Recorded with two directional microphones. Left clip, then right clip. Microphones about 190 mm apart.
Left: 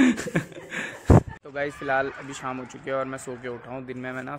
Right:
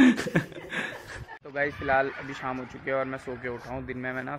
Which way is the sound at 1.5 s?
15° left (ahead or behind).